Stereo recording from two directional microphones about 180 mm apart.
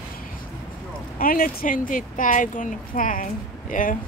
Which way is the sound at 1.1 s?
50° left (ahead or behind).